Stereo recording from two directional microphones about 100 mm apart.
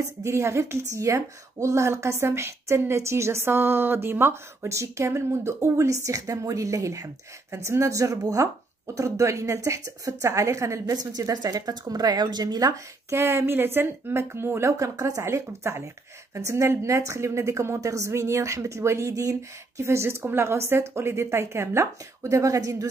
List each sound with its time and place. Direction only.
0.2 s a woman's voice: 30° right (ahead or behind)
13.1 s a woman's voice: 25° right (ahead or behind)